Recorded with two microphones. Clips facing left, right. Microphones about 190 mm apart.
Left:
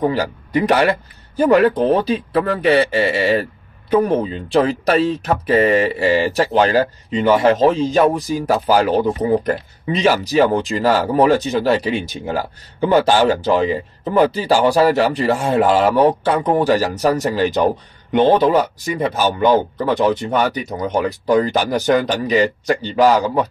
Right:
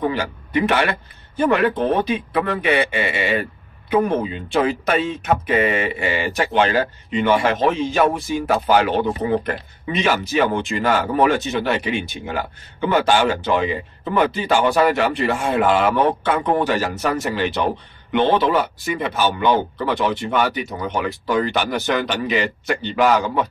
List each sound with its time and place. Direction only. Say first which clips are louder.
0.0 s speech: left 4 dB; 40° left (ahead or behind)